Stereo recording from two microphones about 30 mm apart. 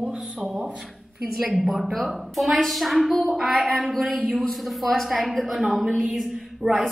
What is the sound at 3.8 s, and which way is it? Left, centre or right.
A woman's voice, centre.